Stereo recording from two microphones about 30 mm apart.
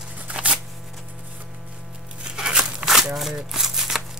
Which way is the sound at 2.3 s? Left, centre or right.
Right.